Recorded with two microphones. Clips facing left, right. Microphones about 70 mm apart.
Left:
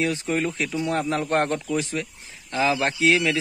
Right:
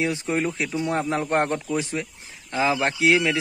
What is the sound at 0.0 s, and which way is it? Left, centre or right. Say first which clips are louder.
A man's voice: even; right.